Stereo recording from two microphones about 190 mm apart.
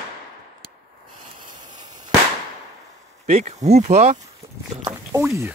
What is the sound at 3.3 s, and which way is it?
Speech, 35° right (ahead or behind).